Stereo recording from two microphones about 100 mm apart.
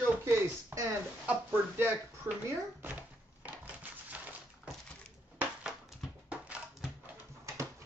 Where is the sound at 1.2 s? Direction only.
20° right (ahead or behind).